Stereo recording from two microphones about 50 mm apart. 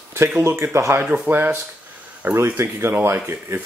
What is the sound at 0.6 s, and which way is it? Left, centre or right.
Speech, right.